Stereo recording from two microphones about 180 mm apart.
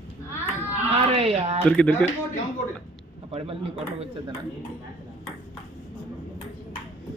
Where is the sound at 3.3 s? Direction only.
30° right (ahead or behind).